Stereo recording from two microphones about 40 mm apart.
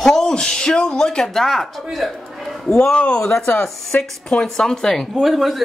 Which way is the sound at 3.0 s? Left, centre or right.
Left.